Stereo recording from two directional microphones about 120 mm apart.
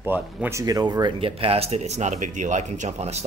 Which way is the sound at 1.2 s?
55° right (ahead or behind).